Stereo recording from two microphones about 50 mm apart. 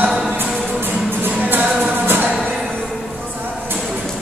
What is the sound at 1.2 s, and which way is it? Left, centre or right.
Music, right.